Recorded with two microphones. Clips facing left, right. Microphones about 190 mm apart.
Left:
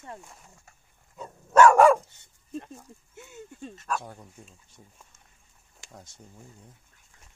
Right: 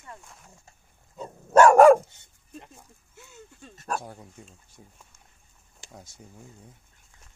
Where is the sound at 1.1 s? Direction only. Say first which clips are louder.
Right 1 dB; 30° right (ahead or behind).